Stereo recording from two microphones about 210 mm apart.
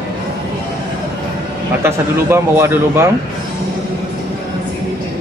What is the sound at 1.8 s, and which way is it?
A man's voice, 10° right (ahead or behind).